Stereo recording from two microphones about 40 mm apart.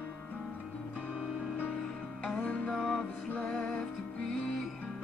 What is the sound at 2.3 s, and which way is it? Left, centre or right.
Music, left.